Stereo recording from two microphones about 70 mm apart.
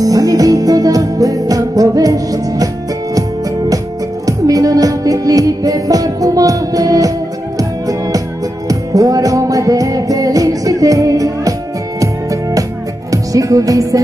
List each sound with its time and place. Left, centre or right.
0.0 s music: right